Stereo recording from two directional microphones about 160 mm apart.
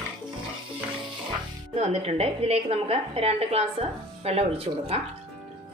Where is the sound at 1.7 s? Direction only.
40° right (ahead or behind).